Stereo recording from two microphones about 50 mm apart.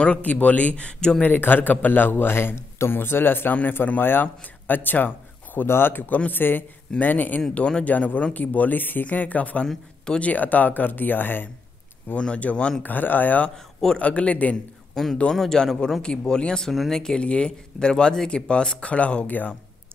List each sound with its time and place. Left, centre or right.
0.0 s speech: left
1.2 s a man's voice: left
7.5 s speech: centre
7.8 s speech: left
12.4 s speech: left
12.8 s speech: left
13.9 s speech: left
15.0 s speech: centre
16.7 s speech: centre
17.0 s speech: centre